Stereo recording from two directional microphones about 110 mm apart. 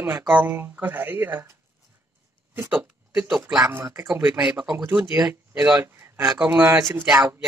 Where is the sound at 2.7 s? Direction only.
15° right (ahead or behind).